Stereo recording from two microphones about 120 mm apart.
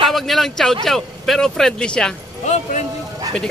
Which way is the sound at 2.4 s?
75° left (ahead or behind).